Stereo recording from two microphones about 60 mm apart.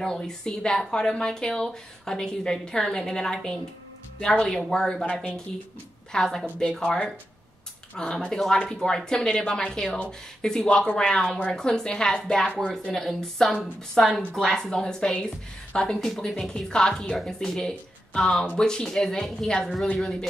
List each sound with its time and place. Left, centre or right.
0.0 s speech: centre
6.1 s speech: centre